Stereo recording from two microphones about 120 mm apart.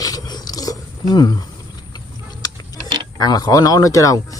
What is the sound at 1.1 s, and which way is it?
Speech, 35° left (ahead or behind).